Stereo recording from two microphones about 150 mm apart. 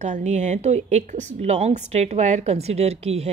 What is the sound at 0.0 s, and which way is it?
A woman's voice, 50° right (ahead or behind).